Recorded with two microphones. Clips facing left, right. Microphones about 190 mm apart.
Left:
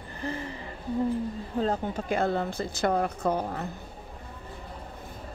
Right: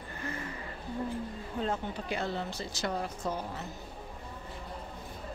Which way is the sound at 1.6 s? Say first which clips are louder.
Left 6 dB; 40° left (ahead or behind).